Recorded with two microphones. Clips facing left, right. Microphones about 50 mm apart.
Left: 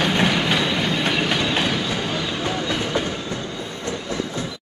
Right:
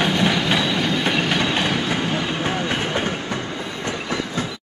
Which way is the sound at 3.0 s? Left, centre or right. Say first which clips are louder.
Right 2 dB; right.